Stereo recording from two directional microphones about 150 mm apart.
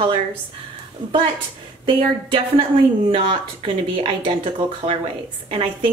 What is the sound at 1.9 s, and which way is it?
Speech, 35° right (ahead or behind).